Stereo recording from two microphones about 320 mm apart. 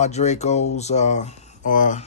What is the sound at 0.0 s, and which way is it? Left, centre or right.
Speech, left.